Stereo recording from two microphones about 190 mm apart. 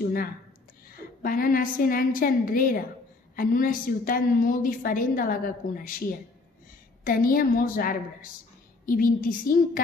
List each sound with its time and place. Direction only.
1.2 s a woman's voice: 50° left (ahead or behind)